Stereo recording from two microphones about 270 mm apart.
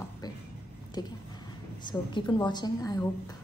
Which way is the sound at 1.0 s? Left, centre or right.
Centre.